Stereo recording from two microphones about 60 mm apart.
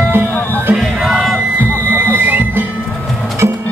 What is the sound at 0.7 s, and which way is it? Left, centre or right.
Crowd, centre.